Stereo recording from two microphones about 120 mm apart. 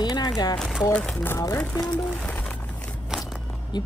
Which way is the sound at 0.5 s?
5° left (ahead or behind).